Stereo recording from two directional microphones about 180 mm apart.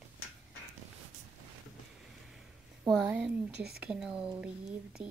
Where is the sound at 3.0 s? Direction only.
5° right (ahead or behind).